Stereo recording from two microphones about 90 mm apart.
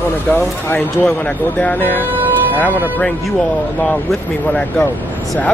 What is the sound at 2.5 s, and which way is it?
Speech, 20° left (ahead or behind).